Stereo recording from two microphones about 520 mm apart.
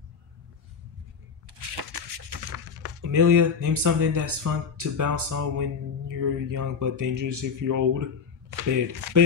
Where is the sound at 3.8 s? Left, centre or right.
Right.